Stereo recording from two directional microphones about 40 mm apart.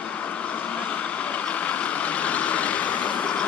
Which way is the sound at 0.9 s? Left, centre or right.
Left.